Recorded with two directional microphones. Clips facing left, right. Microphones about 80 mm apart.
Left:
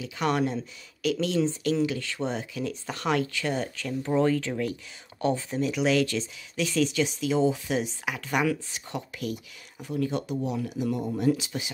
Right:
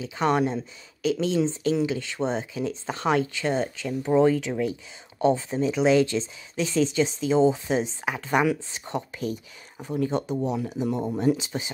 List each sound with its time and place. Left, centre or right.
0.0 s speech: right